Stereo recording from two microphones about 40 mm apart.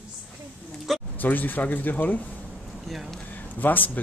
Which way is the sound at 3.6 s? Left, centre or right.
Left.